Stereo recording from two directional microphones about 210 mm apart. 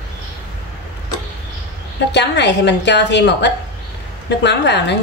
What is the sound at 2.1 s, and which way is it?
A woman's voice, 55° left (ahead or behind).